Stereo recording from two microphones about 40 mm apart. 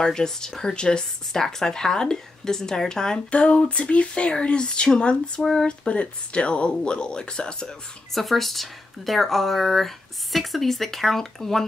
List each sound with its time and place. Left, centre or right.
0.0 s speech: centre
3.3 s speech: left
5.4 s speech: centre
5.7 s speech: left
8.1 s speech: centre